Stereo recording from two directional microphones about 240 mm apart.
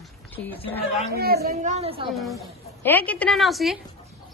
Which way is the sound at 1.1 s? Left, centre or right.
Right.